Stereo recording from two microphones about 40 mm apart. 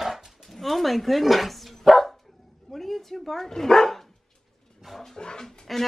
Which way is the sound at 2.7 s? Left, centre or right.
Centre.